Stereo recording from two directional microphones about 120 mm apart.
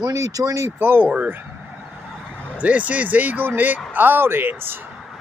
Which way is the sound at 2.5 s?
10° right (ahead or behind).